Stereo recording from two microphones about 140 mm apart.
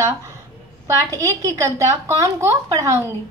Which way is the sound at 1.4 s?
20° right (ahead or behind).